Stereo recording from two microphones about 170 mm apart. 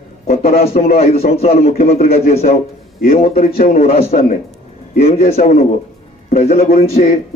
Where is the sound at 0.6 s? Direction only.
40° left (ahead or behind).